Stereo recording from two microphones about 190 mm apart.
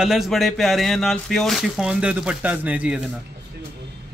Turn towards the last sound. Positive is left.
turn(degrees=-5)  # may be behind; listen again after turning